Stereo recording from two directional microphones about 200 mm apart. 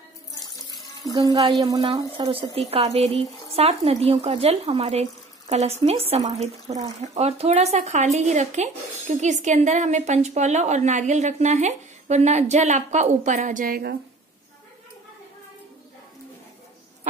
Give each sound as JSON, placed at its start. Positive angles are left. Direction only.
{"t": 0.3, "sound": "water", "side_deg": 20}
{"t": 1.1, "sound": "speech", "side_deg": -20}